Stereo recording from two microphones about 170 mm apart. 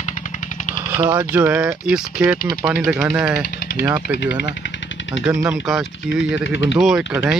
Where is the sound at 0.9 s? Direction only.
15° right (ahead or behind).